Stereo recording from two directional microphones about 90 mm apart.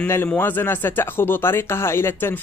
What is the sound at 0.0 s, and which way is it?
Speech, 25° left (ahead or behind).